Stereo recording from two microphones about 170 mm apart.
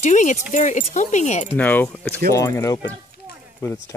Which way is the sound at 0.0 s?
45° left (ahead or behind).